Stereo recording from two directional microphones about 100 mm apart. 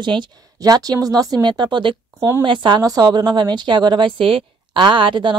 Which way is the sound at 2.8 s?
40° right (ahead or behind).